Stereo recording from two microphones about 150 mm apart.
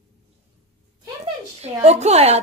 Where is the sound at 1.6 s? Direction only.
45° right (ahead or behind).